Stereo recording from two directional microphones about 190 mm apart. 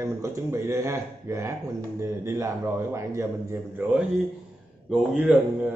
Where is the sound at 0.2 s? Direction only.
15° right (ahead or behind).